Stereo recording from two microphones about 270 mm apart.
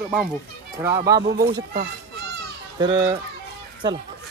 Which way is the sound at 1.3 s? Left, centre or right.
Right.